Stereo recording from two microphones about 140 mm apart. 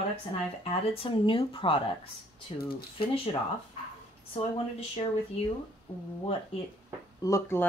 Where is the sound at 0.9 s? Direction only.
40° left (ahead or behind).